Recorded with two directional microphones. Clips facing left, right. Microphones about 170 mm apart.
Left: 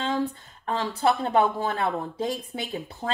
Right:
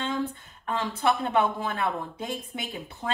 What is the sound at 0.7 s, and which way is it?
Speech, 35° left (ahead or behind).